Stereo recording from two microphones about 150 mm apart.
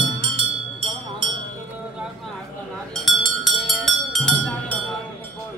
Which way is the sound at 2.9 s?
Centre (ahead or behind).